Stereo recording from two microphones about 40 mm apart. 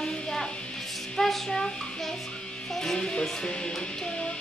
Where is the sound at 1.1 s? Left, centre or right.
Centre.